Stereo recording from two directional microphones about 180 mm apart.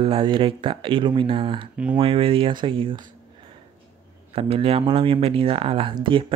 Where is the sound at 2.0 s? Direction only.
30° right (ahead or behind).